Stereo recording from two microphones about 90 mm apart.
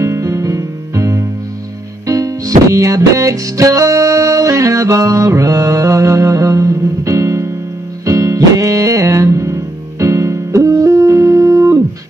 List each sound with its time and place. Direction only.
0.0 s music: 35° right (ahead or behind)